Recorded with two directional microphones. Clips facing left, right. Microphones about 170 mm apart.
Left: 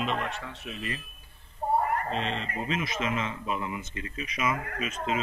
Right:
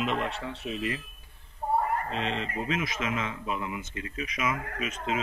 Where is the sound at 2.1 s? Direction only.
10° right (ahead or behind).